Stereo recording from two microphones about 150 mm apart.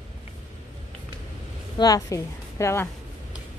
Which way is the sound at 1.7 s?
25° left (ahead or behind).